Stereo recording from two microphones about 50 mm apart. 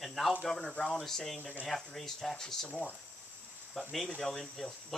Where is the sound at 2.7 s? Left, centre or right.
Left.